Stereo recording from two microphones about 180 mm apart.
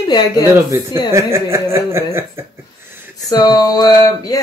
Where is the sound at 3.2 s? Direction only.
20° left (ahead or behind).